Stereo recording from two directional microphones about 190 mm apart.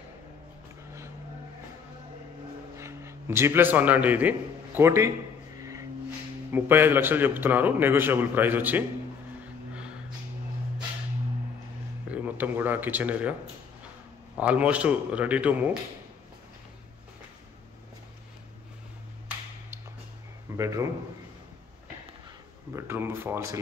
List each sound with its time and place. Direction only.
2.8 s a man's voice: 15° right (ahead or behind)
5.6 s music: 15° right (ahead or behind)
6.5 s a man's voice: 10° right (ahead or behind)
9.8 s a sound: 5° right (ahead or behind)
12.1 s speech: 10° right (ahead or behind)
14.3 s a man's voice: 5° right (ahead or behind)
20.5 s a man's voice: 15° right (ahead or behind)
22.7 s a man's voice: 10° right (ahead or behind)